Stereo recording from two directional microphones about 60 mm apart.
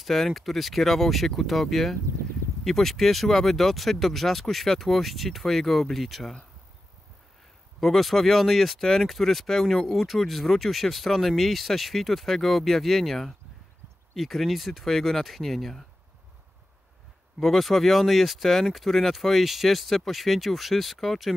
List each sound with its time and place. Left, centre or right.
0.0 s speech: centre
7.8 s speech: centre
17.4 s speech: centre